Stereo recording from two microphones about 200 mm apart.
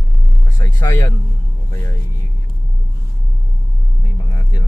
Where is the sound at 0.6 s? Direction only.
15° left (ahead or behind).